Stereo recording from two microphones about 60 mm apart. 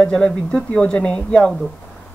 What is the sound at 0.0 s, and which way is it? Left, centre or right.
Speech, centre.